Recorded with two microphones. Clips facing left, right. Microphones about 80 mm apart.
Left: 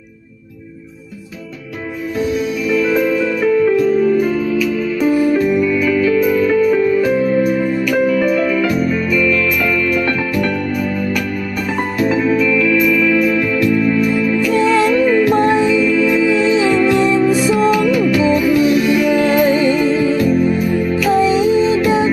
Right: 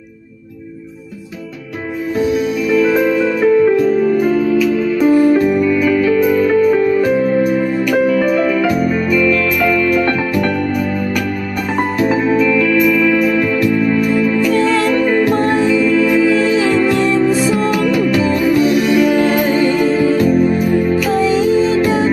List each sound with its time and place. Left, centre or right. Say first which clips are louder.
2.7 s music: right 2 dB; right
4.3 s music: right 3 dB; right
5.1 s music: right 3 dB; right
8.5 s music: right 1 dB; right
12.2 s music: right 1 dB; right
13.4 s music: right 1 dB; centre
14.5 s music: left 1 dB; centre
15.6 s music: right 1 dB; right
16.4 s music: even; centre
17.9 s music: left 1 dB; right
19.5 s music: even; centre
19.8 s music: right 2 dB; centre
21.1 s music: left 3 dB; centre